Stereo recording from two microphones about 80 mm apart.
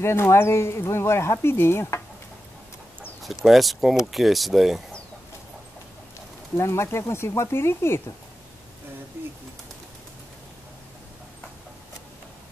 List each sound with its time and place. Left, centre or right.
0.0 s speech: left
3.4 s speech: centre
6.5 s speech: left